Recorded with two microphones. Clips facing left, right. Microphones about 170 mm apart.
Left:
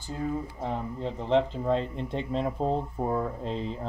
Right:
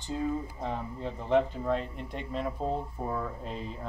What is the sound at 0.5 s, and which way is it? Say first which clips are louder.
Speech: left 3 dB; 20° left (ahead or behind).